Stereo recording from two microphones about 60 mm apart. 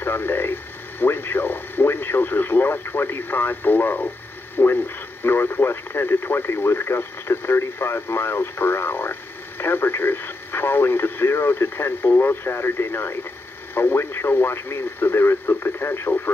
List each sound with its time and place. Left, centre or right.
0.0 s speech: left